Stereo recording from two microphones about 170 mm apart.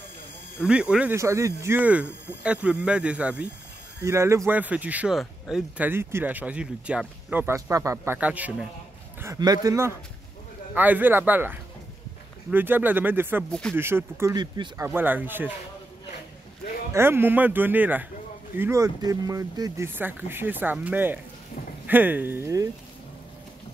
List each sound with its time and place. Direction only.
0.7 s speech: 5° right (ahead or behind)
1.1 s speech: 15° right (ahead or behind)
9.2 s speech: 20° right (ahead or behind)
13.5 s speech: 5° left (ahead or behind)
13.7 s speech: 15° right (ahead or behind)
14.3 s speech: 25° right (ahead or behind)
14.9 s speech: 10° right (ahead or behind)
16.9 s speech: 15° right (ahead or behind)
19.9 s speech: 10° right (ahead or behind)